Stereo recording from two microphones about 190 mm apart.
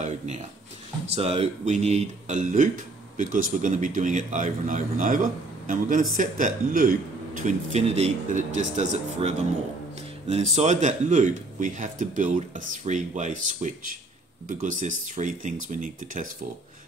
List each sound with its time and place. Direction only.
1.0 s speech: 30° right (ahead or behind)